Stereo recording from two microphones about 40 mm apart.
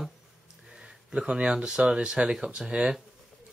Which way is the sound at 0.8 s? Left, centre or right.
Right.